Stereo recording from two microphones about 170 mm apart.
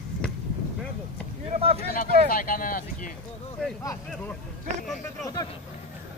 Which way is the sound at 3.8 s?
20° left (ahead or behind).